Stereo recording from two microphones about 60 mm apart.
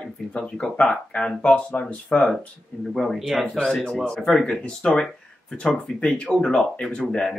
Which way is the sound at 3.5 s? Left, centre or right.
Centre.